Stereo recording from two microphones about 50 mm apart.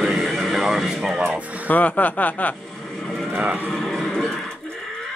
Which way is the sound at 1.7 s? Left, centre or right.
Left.